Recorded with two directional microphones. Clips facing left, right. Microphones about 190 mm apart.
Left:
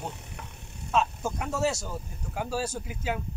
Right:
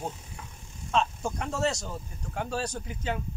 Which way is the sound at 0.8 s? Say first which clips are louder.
Left 1 dB; 5° left (ahead or behind).